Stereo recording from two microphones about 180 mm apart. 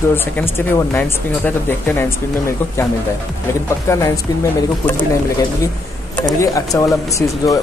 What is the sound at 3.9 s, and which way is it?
Speech, 15° left (ahead or behind).